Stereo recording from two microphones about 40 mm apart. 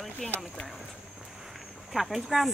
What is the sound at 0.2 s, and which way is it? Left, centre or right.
Speech, centre.